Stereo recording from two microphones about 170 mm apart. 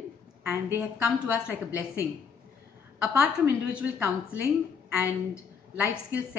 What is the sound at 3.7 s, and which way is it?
Speech, 10° right (ahead or behind).